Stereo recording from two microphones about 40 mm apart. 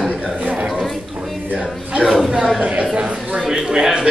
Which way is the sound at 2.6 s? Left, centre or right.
Right.